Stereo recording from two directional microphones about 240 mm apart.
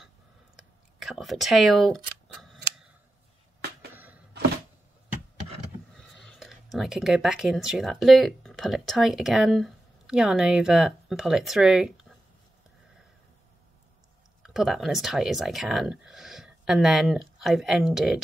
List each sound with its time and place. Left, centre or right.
0.6 s scissors: centre
3.9 s a sound: centre
5.9 s speech: centre
14.4 s speech: centre